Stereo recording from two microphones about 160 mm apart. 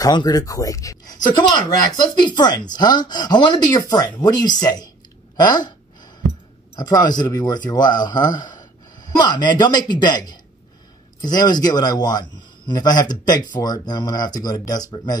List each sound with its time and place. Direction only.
0.0 s a man's voice: 25° left (ahead or behind)
6.7 s a man's voice: 25° left (ahead or behind)